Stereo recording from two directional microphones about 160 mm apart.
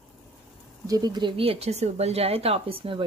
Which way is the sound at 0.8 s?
25° right (ahead or behind).